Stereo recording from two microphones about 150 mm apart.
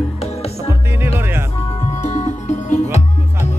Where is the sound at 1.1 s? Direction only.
15° right (ahead or behind).